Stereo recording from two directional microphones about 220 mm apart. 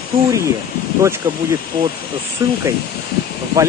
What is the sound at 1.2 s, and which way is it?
Speech, 20° right (ahead or behind).